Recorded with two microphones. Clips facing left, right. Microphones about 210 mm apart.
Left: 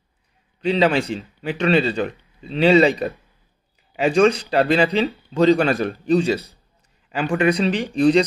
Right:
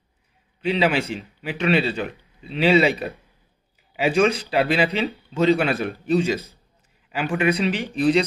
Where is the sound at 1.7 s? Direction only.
40° left (ahead or behind).